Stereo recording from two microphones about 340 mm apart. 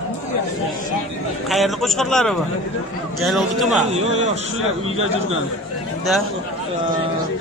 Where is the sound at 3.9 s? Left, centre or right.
Centre.